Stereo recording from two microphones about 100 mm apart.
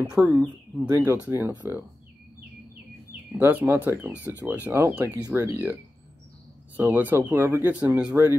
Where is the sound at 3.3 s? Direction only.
20° right (ahead or behind).